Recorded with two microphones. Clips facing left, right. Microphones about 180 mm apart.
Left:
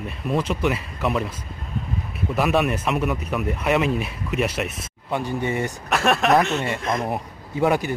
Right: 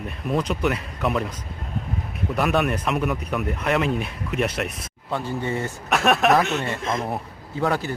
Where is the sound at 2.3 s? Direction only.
Centre (ahead or behind).